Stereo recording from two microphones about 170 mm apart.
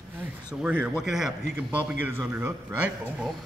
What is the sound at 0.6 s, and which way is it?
A man's voice, 5° right (ahead or behind).